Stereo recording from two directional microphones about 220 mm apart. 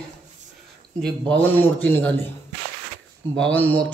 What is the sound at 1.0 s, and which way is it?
Speech, 5° left (ahead or behind).